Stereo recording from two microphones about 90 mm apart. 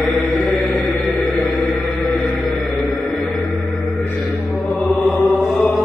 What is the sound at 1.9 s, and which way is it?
Music, centre (ahead or behind).